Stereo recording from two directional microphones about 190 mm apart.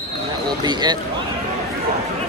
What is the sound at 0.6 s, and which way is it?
Speech, 20° right (ahead or behind).